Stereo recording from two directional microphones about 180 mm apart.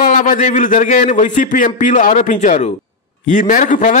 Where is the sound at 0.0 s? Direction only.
45° left (ahead or behind).